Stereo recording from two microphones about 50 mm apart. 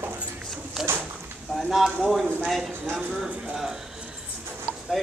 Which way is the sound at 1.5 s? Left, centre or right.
Centre.